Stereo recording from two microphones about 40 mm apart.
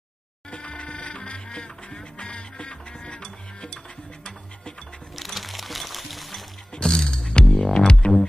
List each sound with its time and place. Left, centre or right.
0.5 s music: left
5.1 s music: centre
6.8 s music: centre